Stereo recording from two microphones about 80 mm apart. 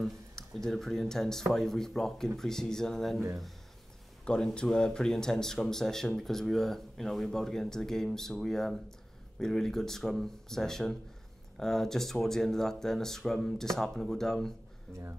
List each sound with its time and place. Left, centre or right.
0.7 s speech: centre
14.9 s speech: right